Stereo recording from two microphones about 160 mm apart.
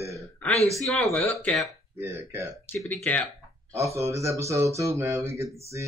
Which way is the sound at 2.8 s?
5° left (ahead or behind).